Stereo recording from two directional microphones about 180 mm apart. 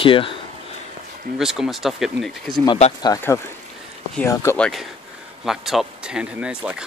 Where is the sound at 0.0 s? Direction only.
30° left (ahead or behind).